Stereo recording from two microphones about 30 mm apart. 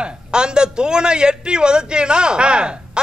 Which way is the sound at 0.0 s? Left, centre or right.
Right.